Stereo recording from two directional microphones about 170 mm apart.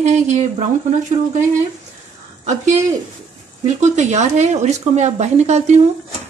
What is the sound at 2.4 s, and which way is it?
Speech, 45° right (ahead or behind).